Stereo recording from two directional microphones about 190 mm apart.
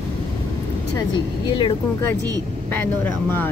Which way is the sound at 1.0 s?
25° left (ahead or behind).